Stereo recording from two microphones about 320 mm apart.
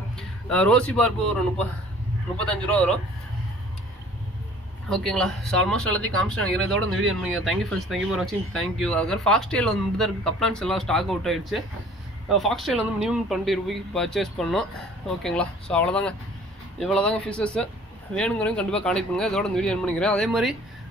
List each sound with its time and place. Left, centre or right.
0.5 s speech: centre
4.8 s speech: centre
7.0 s speech: right
7.4 s speech: centre